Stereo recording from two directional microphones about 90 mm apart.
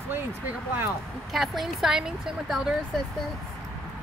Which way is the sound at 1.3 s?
Centre (ahead or behind).